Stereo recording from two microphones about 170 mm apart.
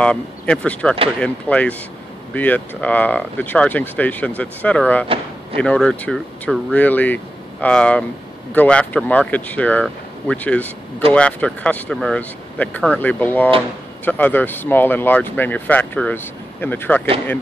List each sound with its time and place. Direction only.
0.0 s speech: 5° left (ahead or behind)
5.0 s door: 35° right (ahead or behind)
5.6 s speech: 5° left (ahead or behind)